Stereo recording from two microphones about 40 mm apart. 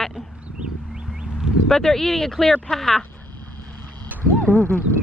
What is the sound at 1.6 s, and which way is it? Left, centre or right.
Speech, centre.